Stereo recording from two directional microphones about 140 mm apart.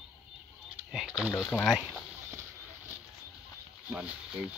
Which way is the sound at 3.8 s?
10° right (ahead or behind).